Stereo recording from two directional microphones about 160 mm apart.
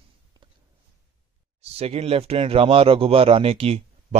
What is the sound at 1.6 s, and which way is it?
Speech, 40° right (ahead or behind).